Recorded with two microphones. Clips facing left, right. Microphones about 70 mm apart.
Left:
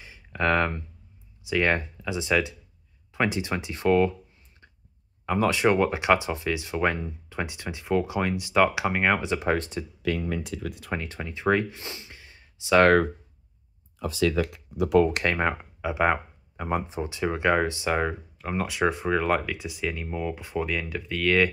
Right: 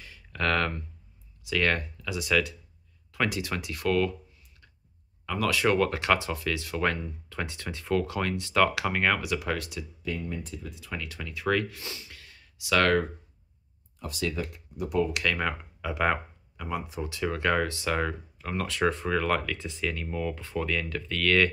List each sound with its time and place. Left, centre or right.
0.0 s a sound: centre
1.4 s speech: left
5.2 s speech: left
10.0 s speech: left
11.0 s speech: left
14.4 s speech: left
15.0 s speech: left; by 16.2 s centre
16.5 s speech: left; by 21.5 s centre